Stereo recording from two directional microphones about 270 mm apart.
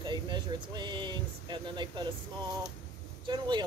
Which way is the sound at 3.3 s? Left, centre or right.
Centre.